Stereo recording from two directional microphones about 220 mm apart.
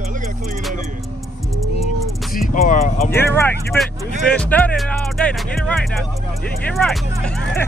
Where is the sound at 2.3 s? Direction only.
40° left (ahead or behind).